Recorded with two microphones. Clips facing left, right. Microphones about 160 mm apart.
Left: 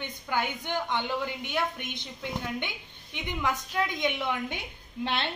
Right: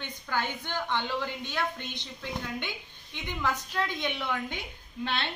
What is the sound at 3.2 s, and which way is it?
A woman's voice, 20° left (ahead or behind).